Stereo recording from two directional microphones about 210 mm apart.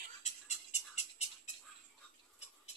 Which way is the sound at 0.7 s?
30° left (ahead or behind).